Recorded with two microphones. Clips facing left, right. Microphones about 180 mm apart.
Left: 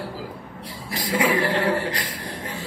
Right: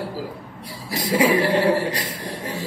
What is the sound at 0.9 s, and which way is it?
A man's voice, 25° right (ahead or behind).